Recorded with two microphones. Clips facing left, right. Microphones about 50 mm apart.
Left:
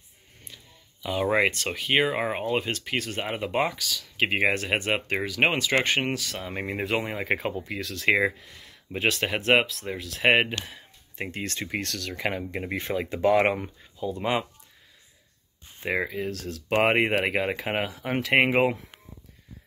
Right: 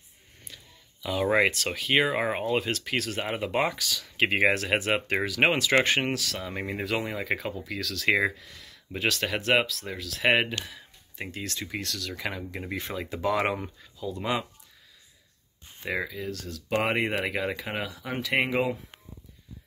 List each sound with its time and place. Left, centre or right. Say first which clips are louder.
1.0 s speech: even; centre
6.3 s speech: left 1 dB; centre
6.8 s speech: left 2 dB; left
7.7 s speech: left 1 dB; centre
10.5 s a sound: left 1 dB; left
11.3 s speech: left 3 dB; left
15.9 s speech: left 3 dB; left